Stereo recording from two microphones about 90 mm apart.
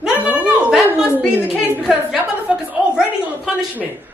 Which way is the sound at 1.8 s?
5° right (ahead or behind).